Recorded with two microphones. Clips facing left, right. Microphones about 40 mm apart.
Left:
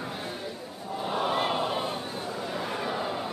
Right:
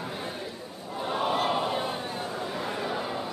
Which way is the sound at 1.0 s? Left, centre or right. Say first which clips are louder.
Right 1 dB; centre.